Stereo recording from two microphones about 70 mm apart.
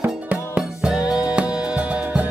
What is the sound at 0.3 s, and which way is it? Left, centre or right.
Music, centre.